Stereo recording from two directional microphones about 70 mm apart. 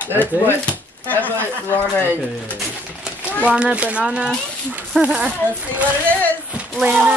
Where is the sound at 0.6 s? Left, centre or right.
Left.